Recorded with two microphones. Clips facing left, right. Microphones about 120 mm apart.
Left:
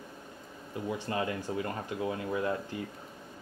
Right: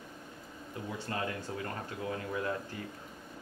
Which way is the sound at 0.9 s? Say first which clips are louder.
Left 3 dB; 20° left (ahead or behind).